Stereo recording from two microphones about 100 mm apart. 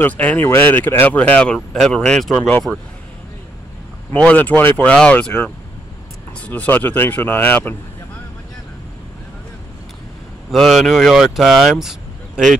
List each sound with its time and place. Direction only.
0.0 s speech: 20° left (ahead or behind)
4.1 s speech: 15° left (ahead or behind)
6.4 s speech: 15° left (ahead or behind)
10.5 s speech: centre (ahead or behind)
11.8 s vehicle: 5° right (ahead or behind)